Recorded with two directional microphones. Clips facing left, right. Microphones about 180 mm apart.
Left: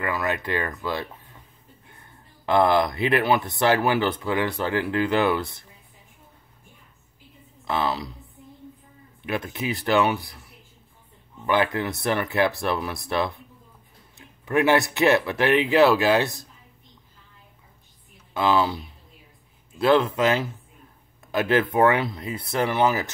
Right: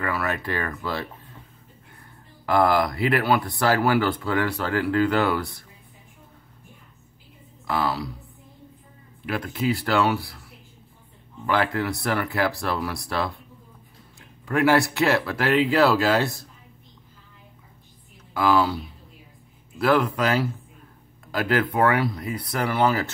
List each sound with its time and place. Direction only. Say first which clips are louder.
0.0 s speech: even; 15° left (ahead or behind)
7.6 s speech: even; 20° left (ahead or behind)
9.2 s speech: right 2 dB; 20° left (ahead or behind)
11.4 s speech: left 1 dB; 20° left (ahead or behind)
18.3 s speech: right 1 dB; 20° left (ahead or behind)
19.8 s speech: left 2 dB; 25° left (ahead or behind)